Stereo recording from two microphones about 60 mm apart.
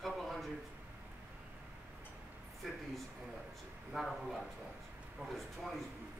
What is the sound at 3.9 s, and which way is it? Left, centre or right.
Speech, centre.